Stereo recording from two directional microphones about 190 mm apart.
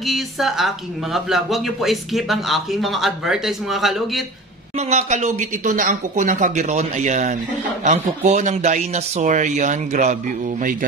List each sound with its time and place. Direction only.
0.0 s a woman's voice: centre (ahead or behind)
4.7 s speech: 35° right (ahead or behind)